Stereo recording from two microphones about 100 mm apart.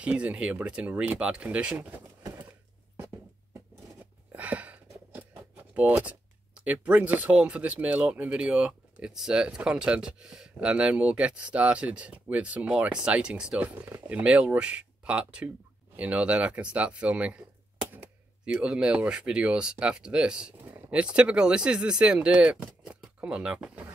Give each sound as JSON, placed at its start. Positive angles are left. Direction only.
{"t": 0.0, "sound": "speech", "side_deg": -15}
{"t": 4.3, "sound": "speech", "side_deg": -15}
{"t": 22.8, "sound": "a sound", "side_deg": -10}